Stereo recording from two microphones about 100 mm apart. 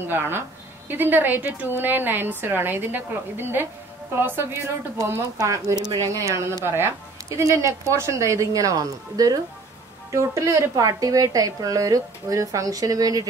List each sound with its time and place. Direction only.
0.1 s a woman's voice: 20° right (ahead or behind)
5.4 s speech: 35° right (ahead or behind)